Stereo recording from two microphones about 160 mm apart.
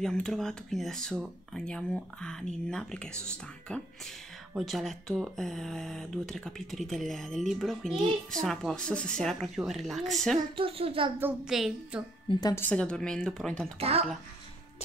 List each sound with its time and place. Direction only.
0.0 s speech: 5° left (ahead or behind)
10.5 s speech: 35° right (ahead or behind)
11.1 s speech: 10° right (ahead or behind)
12.3 s a woman's voice: 25° left (ahead or behind)
12.6 s speech: 5° left (ahead or behind)
13.7 s speech: 40° right (ahead or behind)